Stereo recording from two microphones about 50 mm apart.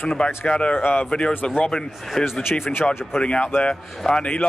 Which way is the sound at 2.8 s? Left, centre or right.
Left.